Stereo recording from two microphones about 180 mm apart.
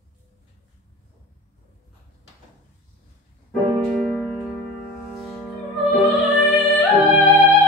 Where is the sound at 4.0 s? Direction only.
5° left (ahead or behind).